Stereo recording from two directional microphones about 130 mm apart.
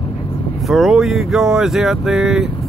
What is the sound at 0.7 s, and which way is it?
Speech, centre (ahead or behind).